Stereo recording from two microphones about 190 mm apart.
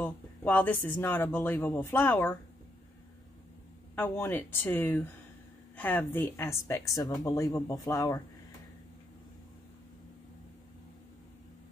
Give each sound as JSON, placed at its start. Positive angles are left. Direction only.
{"t": 0.0, "sound": "speech", "side_deg": 10}
{"t": 3.9, "sound": "speech", "side_deg": 10}